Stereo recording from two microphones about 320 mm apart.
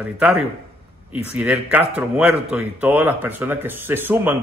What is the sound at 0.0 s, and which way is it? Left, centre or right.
Speech, centre.